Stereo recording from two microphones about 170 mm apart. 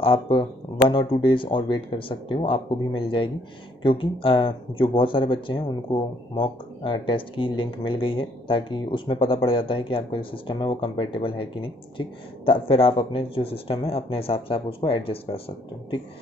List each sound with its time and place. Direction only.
0.0 s speech: 30° left (ahead or behind)